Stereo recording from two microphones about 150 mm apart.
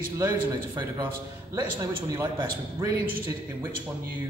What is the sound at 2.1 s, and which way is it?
Speech, 20° right (ahead or behind).